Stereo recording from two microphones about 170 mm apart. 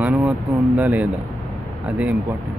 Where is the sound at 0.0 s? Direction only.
Centre (ahead or behind).